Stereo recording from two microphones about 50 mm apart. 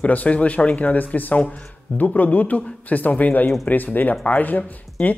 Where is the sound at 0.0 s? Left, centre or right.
Left.